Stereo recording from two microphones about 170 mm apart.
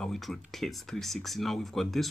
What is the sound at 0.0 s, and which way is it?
Speech, centre (ahead or behind).